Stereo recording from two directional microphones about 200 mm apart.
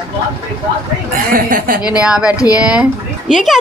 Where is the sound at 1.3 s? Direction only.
45° right (ahead or behind).